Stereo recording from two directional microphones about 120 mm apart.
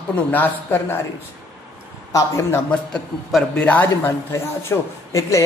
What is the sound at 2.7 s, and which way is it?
A man's voice, 5° left (ahead or behind).